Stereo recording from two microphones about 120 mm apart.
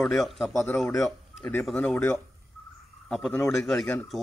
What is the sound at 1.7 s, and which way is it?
Speech, 15° left (ahead or behind).